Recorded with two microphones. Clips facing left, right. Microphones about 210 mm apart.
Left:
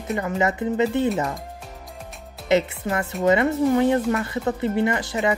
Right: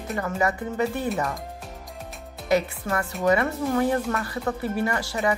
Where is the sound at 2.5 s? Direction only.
25° left (ahead or behind).